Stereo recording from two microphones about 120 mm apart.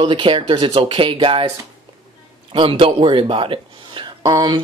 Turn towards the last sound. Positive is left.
turn(degrees=-35)  # may be behind; listen again after turning